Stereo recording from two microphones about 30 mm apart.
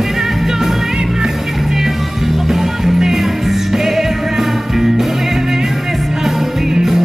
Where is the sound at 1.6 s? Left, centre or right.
Centre.